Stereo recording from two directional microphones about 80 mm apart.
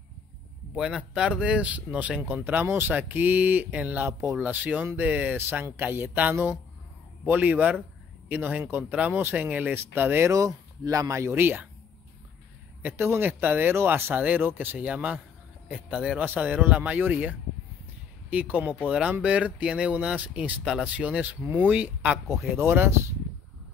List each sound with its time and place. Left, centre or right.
0.7 s speech: centre; by 10.3 s right
10.3 s speech: right
12.8 s speech: right
14.9 s speech: centre
22.6 s speech: right